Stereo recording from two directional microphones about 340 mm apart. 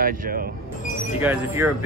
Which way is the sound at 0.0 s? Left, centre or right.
Right.